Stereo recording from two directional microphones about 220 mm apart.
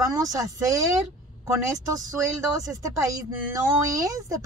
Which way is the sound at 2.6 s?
15° right (ahead or behind).